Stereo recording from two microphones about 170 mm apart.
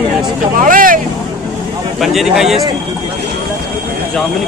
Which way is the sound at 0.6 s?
55° right (ahead or behind).